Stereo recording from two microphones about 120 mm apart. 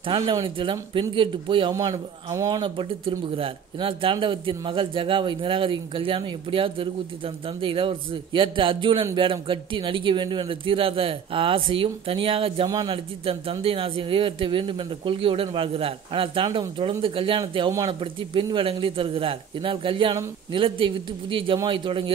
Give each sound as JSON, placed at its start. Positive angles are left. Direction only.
{"t": 0.0, "sound": "speech", "side_deg": -45}
{"t": 1.7, "sound": "a man's voice", "side_deg": -30}
{"t": 2.6, "sound": "speech", "side_deg": -50}
{"t": 12.6, "sound": "a man's voice", "side_deg": -30}
{"t": 12.9, "sound": "speech", "side_deg": -50}
{"t": 17.4, "sound": "a man's voice", "side_deg": -35}
{"t": 18.3, "sound": "speech", "side_deg": -45}